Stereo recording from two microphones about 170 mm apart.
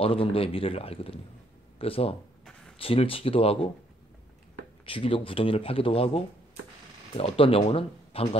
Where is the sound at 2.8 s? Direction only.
35° left (ahead or behind).